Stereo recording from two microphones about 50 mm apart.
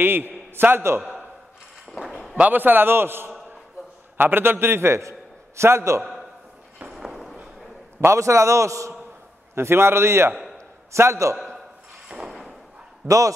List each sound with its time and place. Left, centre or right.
0.0 s a man's voice: right
2.0 s a sound: centre
2.5 s a man's voice: right
6.9 s a sound: centre
8.0 s a man's voice: right
9.6 s a man's voice: right
10.9 s a man's voice: right
12.3 s thump: centre
13.0 s speech: right